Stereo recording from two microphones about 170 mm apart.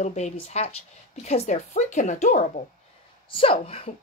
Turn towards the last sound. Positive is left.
turn(degrees=35)  # may be behind; listen again after turning